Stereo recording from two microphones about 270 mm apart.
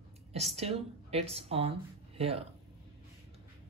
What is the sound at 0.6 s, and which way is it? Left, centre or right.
Speech, right.